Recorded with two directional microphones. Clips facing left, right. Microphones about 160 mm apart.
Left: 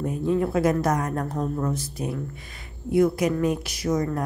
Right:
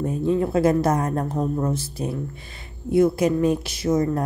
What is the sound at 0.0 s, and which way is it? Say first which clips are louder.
Speech: right 2 dB; 25° right (ahead or behind).